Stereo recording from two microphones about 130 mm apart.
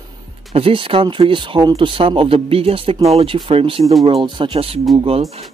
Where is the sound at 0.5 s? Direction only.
45° right (ahead or behind).